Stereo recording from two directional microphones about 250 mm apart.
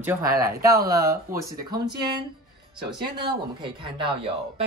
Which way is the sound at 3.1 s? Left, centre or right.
Centre.